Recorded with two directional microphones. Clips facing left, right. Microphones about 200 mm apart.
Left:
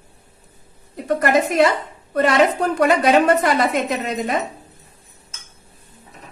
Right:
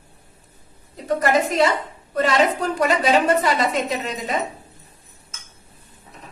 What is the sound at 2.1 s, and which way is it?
A woman's voice, 55° left (ahead or behind).